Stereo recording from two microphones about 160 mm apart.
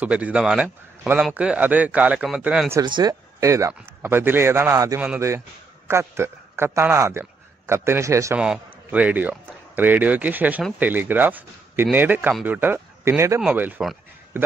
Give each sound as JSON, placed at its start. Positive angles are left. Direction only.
{"t": 0.0, "sound": "a man's voice", "side_deg": -10}
{"t": 2.8, "sound": "a man's voice", "side_deg": -25}
{"t": 8.4, "sound": "a man's voice", "side_deg": -5}